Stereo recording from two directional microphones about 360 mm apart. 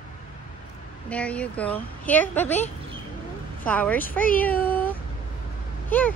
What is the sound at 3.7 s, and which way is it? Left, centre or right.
Speech, centre.